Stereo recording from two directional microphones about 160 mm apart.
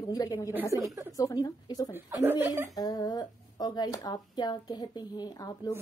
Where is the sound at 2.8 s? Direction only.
25° left (ahead or behind).